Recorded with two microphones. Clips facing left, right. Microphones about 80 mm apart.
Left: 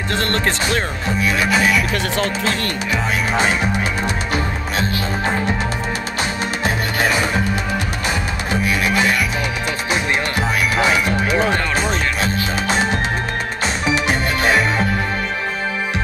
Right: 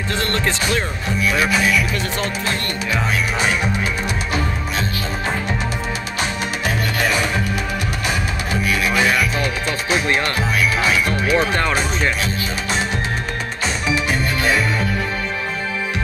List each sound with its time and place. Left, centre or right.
0.1 s speech: left
1.5 s speech: left
2.1 s speech: left
6.6 s music: left
8.5 s music: left
10.8 s music: left
14.0 s music: left